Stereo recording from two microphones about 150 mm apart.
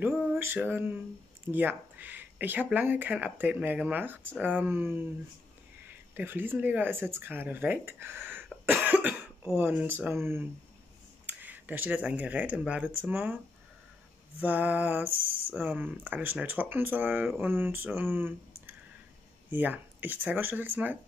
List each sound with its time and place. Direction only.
0.1 s a sound: 5° right (ahead or behind)
0.4 s speech: 15° right (ahead or behind)
6.1 s speech: 15° right (ahead or behind)
14.4 s speech: 10° right (ahead or behind)